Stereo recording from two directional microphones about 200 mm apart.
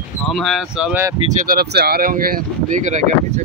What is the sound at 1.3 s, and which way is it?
Speech, 45° right (ahead or behind).